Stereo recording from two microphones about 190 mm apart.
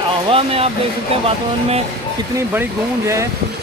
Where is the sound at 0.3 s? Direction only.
30° right (ahead or behind).